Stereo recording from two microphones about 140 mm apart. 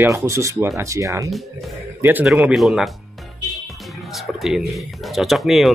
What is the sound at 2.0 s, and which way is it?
Speech, 15° right (ahead or behind).